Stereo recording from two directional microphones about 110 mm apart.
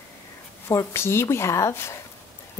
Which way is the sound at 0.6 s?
25° left (ahead or behind).